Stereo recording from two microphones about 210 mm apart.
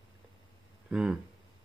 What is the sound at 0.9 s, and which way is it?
Speech, 5° right (ahead or behind).